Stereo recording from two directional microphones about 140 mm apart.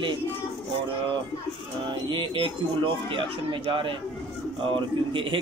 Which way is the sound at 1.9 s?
35° right (ahead or behind).